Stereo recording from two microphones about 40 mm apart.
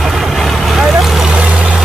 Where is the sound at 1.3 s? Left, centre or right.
Right.